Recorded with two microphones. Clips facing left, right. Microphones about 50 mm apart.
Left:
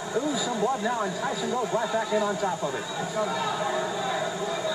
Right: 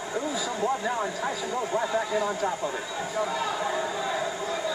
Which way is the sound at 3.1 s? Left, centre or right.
Centre.